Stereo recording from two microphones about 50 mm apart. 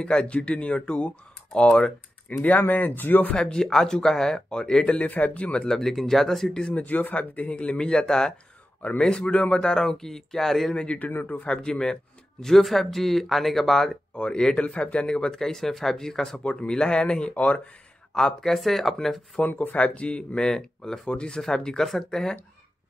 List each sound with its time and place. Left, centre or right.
0.0 s speech: left
3.3 s speech: centre
6.7 s speech: left; by 10.7 s centre
10.7 s speech: left
11.1 s speech: left
11.4 s speech: centre
14.1 s speech: centre
18.1 s speech: centre
19.4 s speech: left
19.8 s speech: left